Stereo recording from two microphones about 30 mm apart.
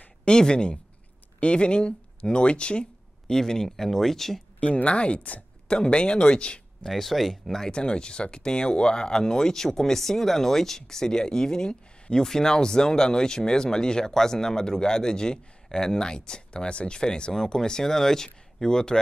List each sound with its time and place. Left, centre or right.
0.3 s speech: left
3.3 s speech: centre
4.8 s speech: left
5.7 s speech: left
6.9 s speech: centre
7.7 s speech: left
14.1 s speech: centre